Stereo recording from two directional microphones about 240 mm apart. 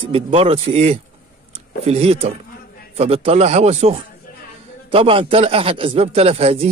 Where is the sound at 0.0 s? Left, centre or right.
Right.